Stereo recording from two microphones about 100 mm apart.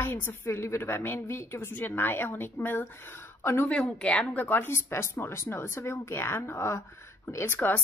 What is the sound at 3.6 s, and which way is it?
A woman's voice, 10° left (ahead or behind).